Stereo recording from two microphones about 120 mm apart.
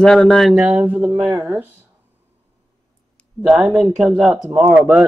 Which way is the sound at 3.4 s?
Centre (ahead or behind).